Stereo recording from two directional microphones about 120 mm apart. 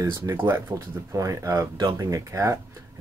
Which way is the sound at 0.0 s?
25° right (ahead or behind).